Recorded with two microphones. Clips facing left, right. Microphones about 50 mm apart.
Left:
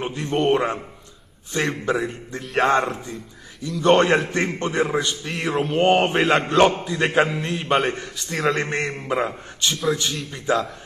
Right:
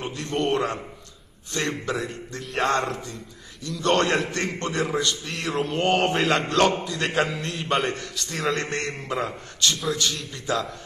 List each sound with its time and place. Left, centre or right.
0.0 s a man's voice: left
8.3 s a man's voice: centre
8.6 s a man's voice: centre